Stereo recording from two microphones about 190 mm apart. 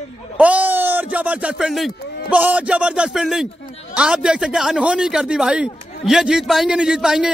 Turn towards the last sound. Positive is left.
turn(degrees=-5)  # may be behind; listen again after turning